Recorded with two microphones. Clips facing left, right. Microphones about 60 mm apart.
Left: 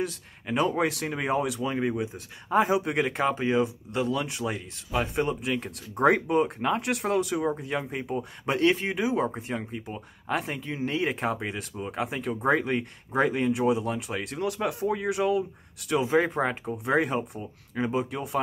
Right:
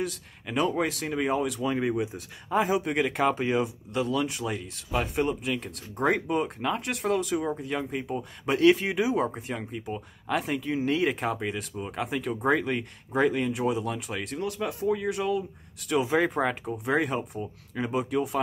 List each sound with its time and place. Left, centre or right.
0.0 s speech: centre
3.2 s speech: centre
4.1 s speech: centre
6.6 s speech: centre
8.5 s speech: centre
14.4 s speech: left
16.0 s speech: centre